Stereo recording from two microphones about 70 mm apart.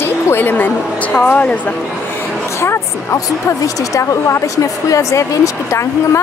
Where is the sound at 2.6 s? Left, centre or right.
Left.